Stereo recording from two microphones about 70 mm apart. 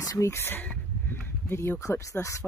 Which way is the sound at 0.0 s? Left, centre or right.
Left.